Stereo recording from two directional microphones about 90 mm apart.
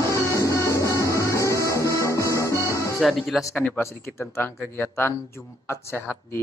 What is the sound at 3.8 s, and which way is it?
Speech, 30° left (ahead or behind).